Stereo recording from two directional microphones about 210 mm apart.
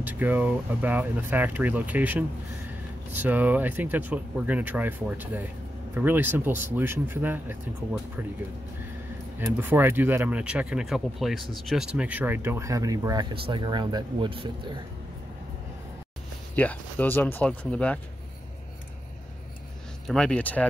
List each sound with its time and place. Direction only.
0.0 s speech: 10° right (ahead or behind)
9.4 s speech: 10° right (ahead or behind)
16.5 s speech: 10° left (ahead or behind)
20.1 s speech: 5° left (ahead or behind)